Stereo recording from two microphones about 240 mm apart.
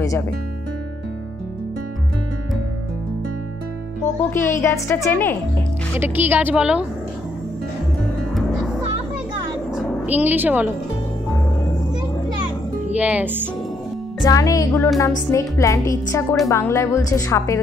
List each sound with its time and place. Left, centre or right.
4.3 s speech: centre
5.9 s a woman's voice: centre
9.8 s music: centre
12.9 s a woman's voice: centre
14.2 s speech: centre